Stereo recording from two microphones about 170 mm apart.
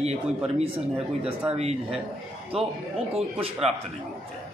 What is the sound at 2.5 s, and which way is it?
Speech, centre (ahead or behind).